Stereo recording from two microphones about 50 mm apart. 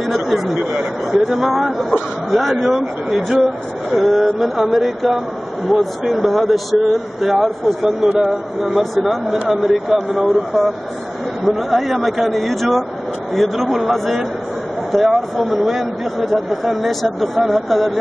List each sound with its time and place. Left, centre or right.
0.0 s a sound: centre
0.6 s speech: right
1.2 s speech: centre